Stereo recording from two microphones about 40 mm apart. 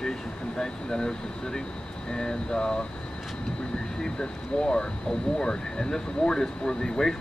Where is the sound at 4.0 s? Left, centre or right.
Centre.